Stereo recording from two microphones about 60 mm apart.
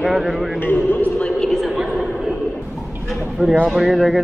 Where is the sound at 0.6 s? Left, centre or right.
Left.